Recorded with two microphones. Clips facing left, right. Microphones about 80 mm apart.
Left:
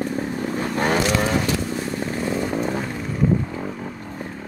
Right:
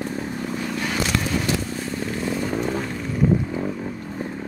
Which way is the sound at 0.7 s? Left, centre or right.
Left.